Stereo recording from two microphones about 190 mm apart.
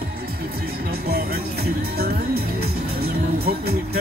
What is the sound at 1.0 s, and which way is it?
Music, 55° right (ahead or behind).